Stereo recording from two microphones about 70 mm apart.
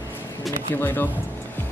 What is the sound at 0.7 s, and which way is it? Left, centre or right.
Speech, left.